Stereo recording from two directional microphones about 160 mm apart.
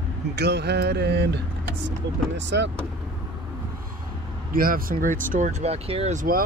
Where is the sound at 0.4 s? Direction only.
90° right.